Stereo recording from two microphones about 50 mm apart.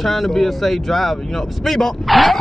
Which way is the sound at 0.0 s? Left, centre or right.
Centre.